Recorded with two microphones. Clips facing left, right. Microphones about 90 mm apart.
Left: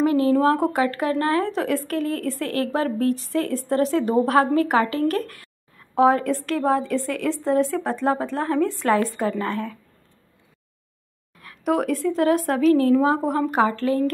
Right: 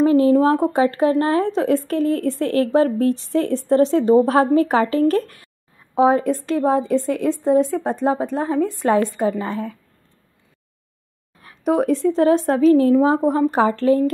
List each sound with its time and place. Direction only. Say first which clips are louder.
0.0 s speech: right 4 dB; 30° right (ahead or behind)
11.3 s speech: right 3 dB; 25° right (ahead or behind)